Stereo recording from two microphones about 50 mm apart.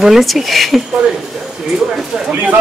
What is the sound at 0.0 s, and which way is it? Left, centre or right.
Speech, centre.